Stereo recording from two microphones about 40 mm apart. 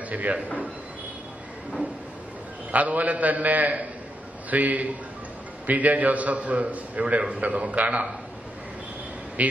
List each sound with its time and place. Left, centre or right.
0.1 s a man's voice: right
2.7 s a man's voice: right
9.4 s a man's voice: right